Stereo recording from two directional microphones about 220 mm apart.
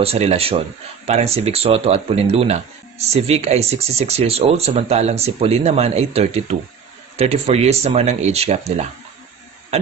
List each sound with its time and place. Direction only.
0.0 s speech: 30° right (ahead or behind)